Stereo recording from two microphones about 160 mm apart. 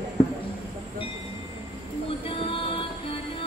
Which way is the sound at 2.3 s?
35° left (ahead or behind).